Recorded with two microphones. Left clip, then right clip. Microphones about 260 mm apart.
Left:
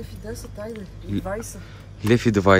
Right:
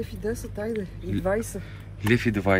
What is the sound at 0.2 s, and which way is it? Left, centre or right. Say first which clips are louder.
Speech: right 3 dB; right.